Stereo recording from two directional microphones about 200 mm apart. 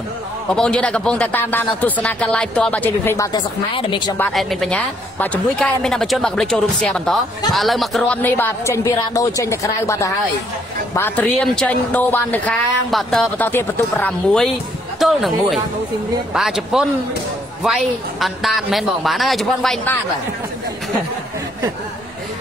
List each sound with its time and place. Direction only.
0.5 s a woman's voice: 5° left (ahead or behind)
3.3 s a woman's voice: 25° left (ahead or behind)
4.2 s a woman's voice: centre (ahead or behind)